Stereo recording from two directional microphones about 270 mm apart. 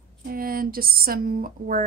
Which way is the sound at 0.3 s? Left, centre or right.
Right.